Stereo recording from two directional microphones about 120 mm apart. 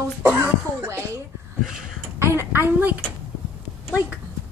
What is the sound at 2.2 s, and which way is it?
Speech, 20° right (ahead or behind).